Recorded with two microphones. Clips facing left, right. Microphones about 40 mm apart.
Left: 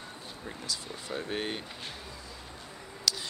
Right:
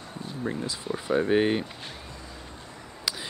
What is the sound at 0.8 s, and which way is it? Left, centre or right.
Speech, centre.